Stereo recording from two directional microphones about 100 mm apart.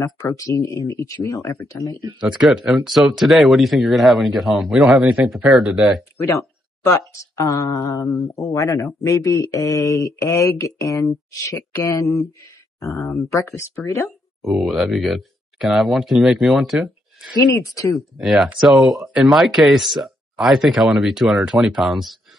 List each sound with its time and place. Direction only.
0.0 s speech: 35° left (ahead or behind)
2.0 s speech: 10° right (ahead or behind)
6.8 s speech: 35° left (ahead or behind)
8.3 s speech: 20° left (ahead or behind)
8.5 s speech: 35° left (ahead or behind)
14.4 s speech: centre (ahead or behind)